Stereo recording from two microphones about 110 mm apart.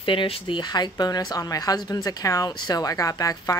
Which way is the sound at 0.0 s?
50° left (ahead or behind).